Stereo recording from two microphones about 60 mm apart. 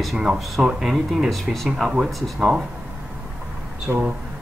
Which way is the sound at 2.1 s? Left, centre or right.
Centre.